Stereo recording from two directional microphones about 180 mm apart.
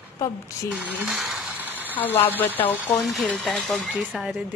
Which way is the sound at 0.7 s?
Centre (ahead or behind).